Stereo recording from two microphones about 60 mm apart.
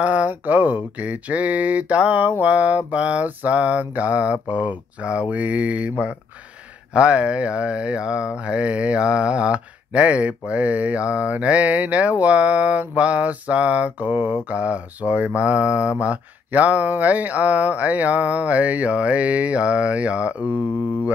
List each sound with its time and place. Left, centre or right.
0.0 s mantra: right